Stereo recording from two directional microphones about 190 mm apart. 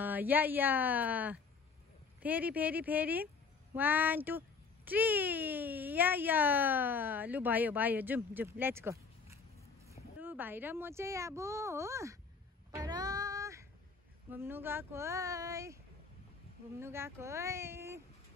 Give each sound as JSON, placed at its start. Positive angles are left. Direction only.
{"t": 0.0, "sound": "a child's voice", "side_deg": -10}
{"t": 12.7, "sound": "music", "side_deg": -20}
{"t": 14.3, "sound": "a child's voice", "side_deg": -10}
{"t": 16.8, "sound": "a child's voice", "side_deg": -15}